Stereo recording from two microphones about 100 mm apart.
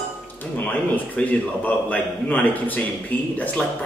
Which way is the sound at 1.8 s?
15° left (ahead or behind).